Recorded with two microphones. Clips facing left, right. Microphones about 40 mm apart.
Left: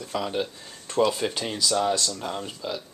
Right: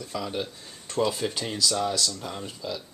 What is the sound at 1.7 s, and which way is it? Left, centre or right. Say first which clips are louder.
Speech: left 4 dB; left.